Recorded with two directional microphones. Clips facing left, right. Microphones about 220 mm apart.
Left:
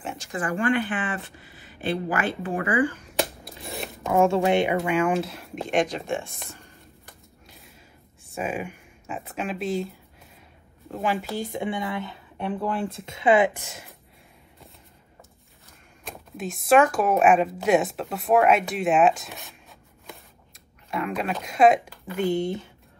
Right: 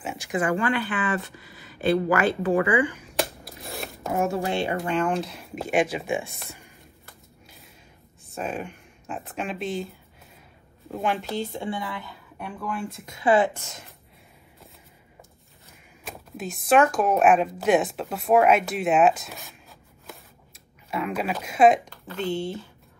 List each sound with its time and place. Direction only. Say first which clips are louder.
0.0 s a sound: right 1 dB; 5° right (ahead or behind)
0.3 s speech: right 5 dB; 25° right (ahead or behind)
1.8 s speech: right 5 dB; 40° right (ahead or behind)
3.0 s a sound: left 1 dB; centre (ahead or behind)
4.2 s speech: left 6 dB; 25° left (ahead or behind); by 6.6 s 5° right (ahead or behind)
7.4 s a sound: left 2 dB; centre (ahead or behind)
8.4 s speech: left 1 dB; 5° left (ahead or behind)
11.5 s a woman's voice: left 3 dB; 20° left (ahead or behind)
16.0 s speech: left 1 dB; centre (ahead or behind)
20.9 s speech: even; centre (ahead or behind)
22.0 s speech: left 4 dB; 15° left (ahead or behind)